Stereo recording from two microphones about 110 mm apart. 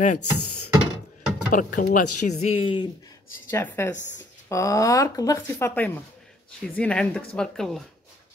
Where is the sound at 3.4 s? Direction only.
20° left (ahead or behind).